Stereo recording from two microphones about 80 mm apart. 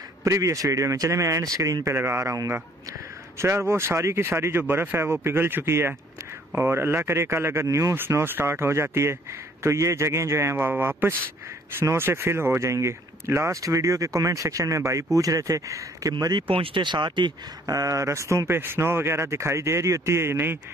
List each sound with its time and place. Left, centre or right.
0.2 s speech: right
3.3 s speech: right
7.9 s speech: right
16.4 s speech: right
17.6 s speech: right